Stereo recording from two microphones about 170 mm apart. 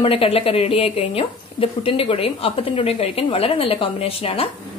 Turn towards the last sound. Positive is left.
turn(degrees=35)  # may be behind; listen again after turning